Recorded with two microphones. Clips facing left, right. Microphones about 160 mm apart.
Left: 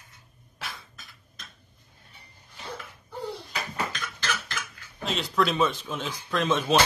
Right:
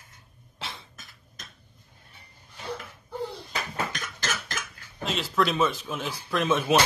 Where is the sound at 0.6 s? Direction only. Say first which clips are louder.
Right 1 dB; 25° right (ahead or behind).